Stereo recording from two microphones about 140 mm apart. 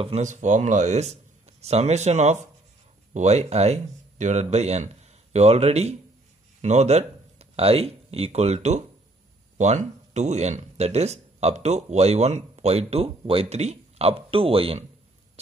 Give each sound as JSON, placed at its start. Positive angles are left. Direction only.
{"t": 0.0, "sound": "speech", "side_deg": -55}